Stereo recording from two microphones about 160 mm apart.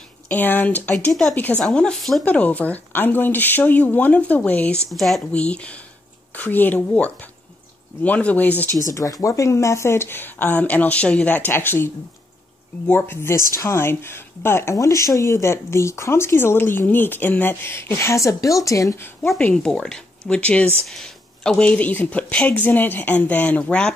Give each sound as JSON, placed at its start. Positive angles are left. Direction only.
{"t": 0.3, "sound": "speech", "side_deg": 10}
{"t": 8.9, "sound": "speech", "side_deg": 20}
{"t": 19.2, "sound": "speech", "side_deg": 5}